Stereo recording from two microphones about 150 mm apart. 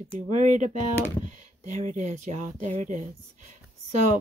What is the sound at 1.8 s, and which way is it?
Speech, 50° right (ahead or behind).